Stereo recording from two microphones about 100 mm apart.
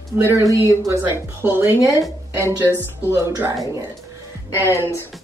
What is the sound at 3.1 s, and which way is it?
Speech, 25° right (ahead or behind).